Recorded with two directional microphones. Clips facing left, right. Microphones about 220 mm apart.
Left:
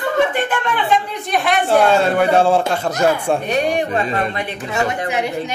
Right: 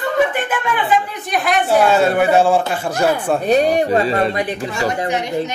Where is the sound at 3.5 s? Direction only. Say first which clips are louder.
Right 9 dB; 35° right (ahead or behind).